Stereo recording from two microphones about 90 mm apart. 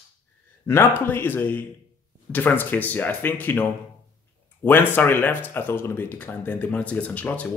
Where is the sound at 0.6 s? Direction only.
25° left (ahead or behind).